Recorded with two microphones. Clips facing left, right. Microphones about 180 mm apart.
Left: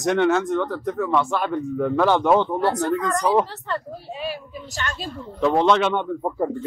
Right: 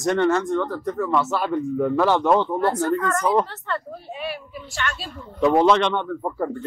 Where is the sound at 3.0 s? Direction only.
15° left (ahead or behind).